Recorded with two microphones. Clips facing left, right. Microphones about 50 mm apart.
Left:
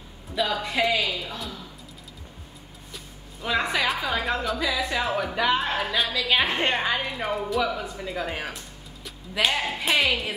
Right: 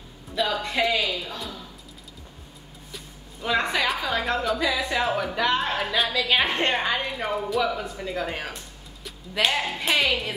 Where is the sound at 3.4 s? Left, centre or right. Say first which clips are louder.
Right 1 dB; centre.